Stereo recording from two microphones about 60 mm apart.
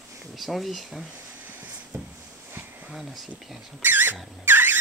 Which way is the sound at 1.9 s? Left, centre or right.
Right.